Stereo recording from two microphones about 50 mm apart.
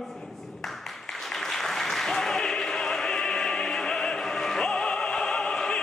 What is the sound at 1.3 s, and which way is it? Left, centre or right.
Applause, centre.